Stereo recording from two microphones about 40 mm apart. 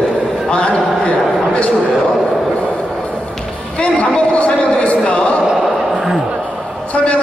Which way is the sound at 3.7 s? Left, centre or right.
Left.